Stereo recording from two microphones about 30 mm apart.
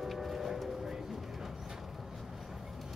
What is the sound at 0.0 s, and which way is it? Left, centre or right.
Vehicle, centre.